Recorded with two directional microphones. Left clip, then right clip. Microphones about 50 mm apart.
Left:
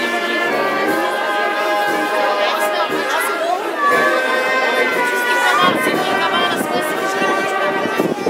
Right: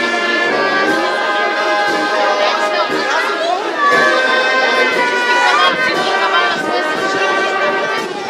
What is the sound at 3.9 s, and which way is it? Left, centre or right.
Music, right.